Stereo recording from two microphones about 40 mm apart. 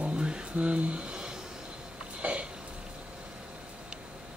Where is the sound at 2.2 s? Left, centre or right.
Right.